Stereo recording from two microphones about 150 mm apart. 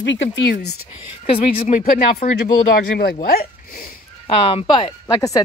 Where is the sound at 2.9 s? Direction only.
90° left.